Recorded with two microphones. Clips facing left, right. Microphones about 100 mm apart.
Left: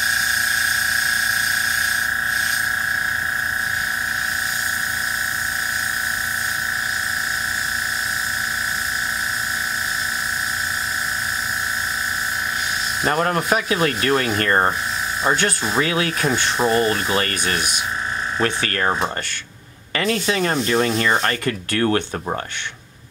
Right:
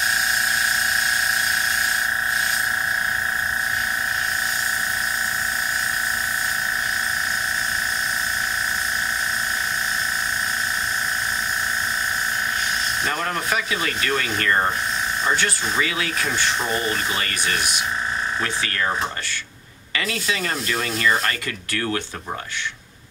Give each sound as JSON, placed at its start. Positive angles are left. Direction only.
{"t": 13.0, "sound": "rub", "side_deg": 40}
{"t": 15.2, "sound": "speech", "side_deg": 45}
{"t": 19.9, "sound": "rub", "side_deg": 40}